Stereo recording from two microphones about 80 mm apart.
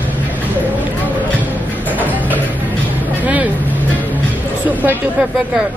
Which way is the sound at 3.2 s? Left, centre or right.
Centre.